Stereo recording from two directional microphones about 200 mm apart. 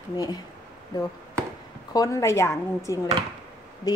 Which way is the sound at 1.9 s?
15° left (ahead or behind).